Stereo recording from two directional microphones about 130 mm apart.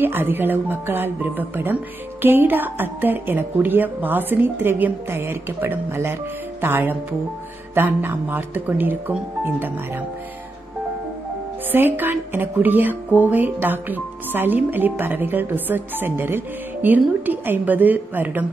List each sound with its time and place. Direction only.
0.0 s speech: 15° right (ahead or behind)
11.7 s speech: 15° right (ahead or behind)